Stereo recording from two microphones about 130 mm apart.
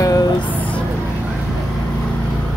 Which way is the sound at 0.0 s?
25° left (ahead or behind).